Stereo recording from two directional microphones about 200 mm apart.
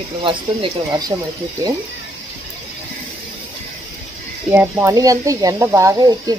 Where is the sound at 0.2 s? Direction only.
25° right (ahead or behind).